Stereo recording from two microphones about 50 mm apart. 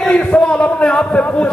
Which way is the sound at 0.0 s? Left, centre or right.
Left.